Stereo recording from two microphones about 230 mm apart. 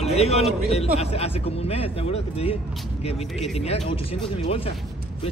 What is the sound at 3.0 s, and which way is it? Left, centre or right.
Speech, left.